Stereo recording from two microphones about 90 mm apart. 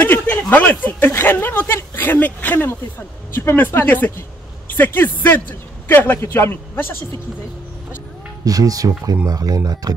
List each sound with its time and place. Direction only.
0.0 s a sound: 20° left (ahead or behind)
0.5 s a man's voice: 20° left (ahead or behind)
8.5 s speech: 40° right (ahead or behind)